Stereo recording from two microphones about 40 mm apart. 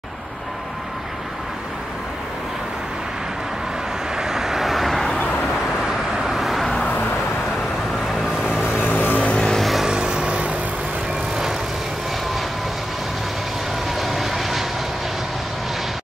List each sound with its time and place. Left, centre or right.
4.2 s vehicle: centre
6.3 s vehicle: centre
8.8 s vehicle: left
9.6 s vehicle: centre
9.8 s vehicle: right
13.9 s vehicle: centre